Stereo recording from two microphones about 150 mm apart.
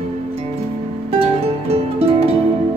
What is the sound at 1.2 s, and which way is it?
Music, 40° right (ahead or behind).